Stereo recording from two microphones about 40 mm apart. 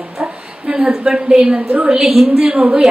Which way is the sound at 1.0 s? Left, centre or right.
Centre.